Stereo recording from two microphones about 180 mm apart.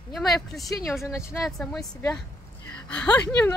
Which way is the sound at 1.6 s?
5° left (ahead or behind).